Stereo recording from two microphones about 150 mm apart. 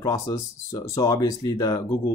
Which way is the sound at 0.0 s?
20° left (ahead or behind).